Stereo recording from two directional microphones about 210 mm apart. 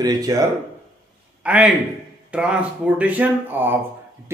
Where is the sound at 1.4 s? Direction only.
5° right (ahead or behind).